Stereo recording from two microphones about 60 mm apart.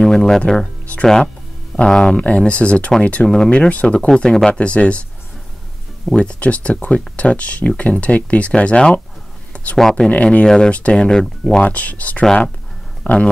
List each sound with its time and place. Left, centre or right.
0.0 s speech: centre
6.1 s speech: centre
10.1 s speech: left
10.4 s speech: centre
11.7 s speech: left